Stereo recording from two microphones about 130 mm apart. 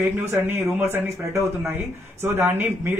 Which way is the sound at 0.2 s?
20° right (ahead or behind).